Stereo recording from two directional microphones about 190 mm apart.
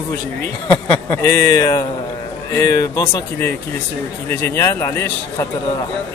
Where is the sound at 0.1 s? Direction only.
10° left (ahead or behind).